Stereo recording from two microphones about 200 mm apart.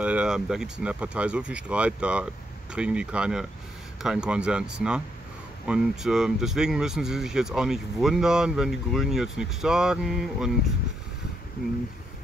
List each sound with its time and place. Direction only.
0.0 s speech: 5° right (ahead or behind)